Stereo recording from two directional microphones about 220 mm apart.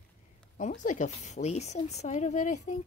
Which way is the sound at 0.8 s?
35° left (ahead or behind).